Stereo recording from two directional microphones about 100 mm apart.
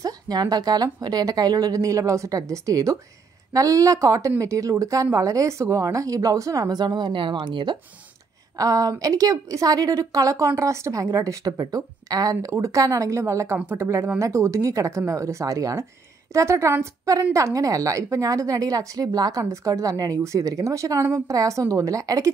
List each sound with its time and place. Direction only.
0.0 s a woman's voice: 40° right (ahead or behind)
8.5 s a woman's voice: 35° right (ahead or behind)